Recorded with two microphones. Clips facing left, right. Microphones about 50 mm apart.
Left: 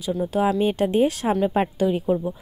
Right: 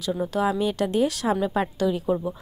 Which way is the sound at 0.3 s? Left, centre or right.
Centre.